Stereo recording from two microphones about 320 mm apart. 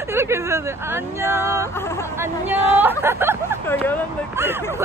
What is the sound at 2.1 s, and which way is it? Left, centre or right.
Speech, centre.